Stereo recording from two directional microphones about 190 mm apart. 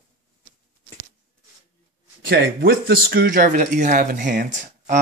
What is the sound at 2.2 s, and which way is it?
A man's voice, 55° right (ahead or behind).